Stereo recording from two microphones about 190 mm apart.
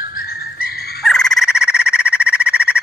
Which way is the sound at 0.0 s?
50° left (ahead or behind).